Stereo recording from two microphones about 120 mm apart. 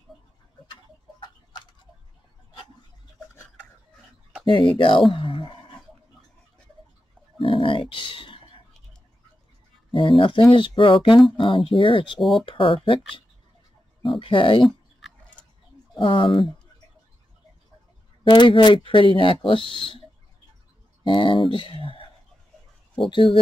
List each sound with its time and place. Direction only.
4.5 s speech: 40° left (ahead or behind)
5.1 s a sound: 45° left (ahead or behind)
7.3 s a sound: 45° left (ahead or behind)
9.8 s a sound: 45° left (ahead or behind)
10.5 s speech: 45° left (ahead or behind)
12.2 s speech: centre (ahead or behind)
12.4 s speech: 50° left (ahead or behind)
14.6 s a sound: centre (ahead or behind)
16.0 s speech: 45° left (ahead or behind)
18.2 s speech: 40° left (ahead or behind)
21.0 s speech: 45° left (ahead or behind)
23.0 s speech: 45° left (ahead or behind)